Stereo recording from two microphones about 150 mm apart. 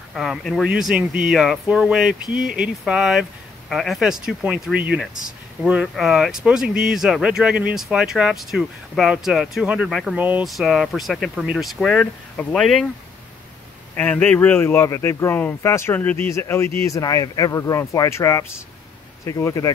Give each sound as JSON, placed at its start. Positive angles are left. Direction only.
{"t": 0.1, "sound": "speech", "side_deg": 0}
{"t": 10.1, "sound": "speech", "side_deg": -10}
{"t": 10.4, "sound": "speech", "side_deg": 0}
{"t": 13.9, "sound": "speech", "side_deg": 10}